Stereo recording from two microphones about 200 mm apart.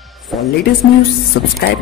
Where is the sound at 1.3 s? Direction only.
55° left (ahead or behind).